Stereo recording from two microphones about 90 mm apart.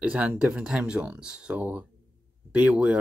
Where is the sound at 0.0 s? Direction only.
15° right (ahead or behind).